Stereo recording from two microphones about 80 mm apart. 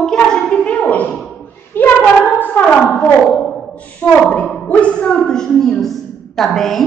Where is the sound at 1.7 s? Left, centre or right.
Left.